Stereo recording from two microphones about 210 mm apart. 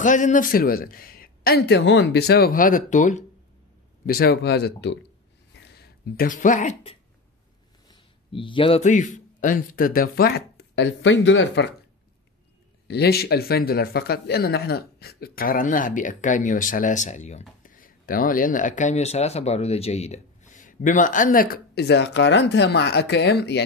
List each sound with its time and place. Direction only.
0.0 s a man's voice: 35° left (ahead or behind); by 11.7 s 60° left (ahead or behind)
12.8 s speech: 50° left (ahead or behind)